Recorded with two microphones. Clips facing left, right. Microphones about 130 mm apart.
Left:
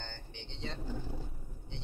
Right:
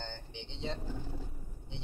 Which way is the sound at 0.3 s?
20° right (ahead or behind).